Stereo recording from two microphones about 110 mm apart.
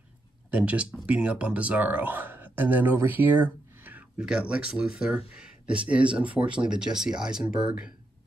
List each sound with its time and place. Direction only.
0.5 s speech: 10° right (ahead or behind)